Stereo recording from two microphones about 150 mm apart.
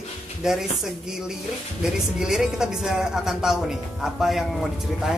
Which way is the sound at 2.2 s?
5° right (ahead or behind).